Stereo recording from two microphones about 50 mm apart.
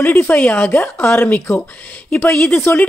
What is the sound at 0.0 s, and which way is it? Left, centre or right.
Speech, left.